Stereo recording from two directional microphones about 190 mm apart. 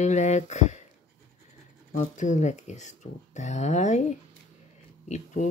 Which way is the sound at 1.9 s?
40° left (ahead or behind).